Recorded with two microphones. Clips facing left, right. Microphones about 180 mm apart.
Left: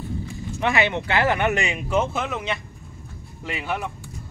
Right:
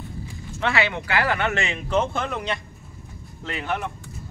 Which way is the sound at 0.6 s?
20° left (ahead or behind).